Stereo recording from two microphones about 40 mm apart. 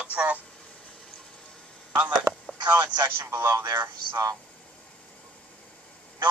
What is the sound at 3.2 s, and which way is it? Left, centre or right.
Speech, right.